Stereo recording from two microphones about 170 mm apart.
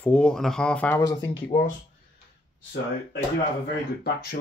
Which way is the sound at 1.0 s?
20° left (ahead or behind).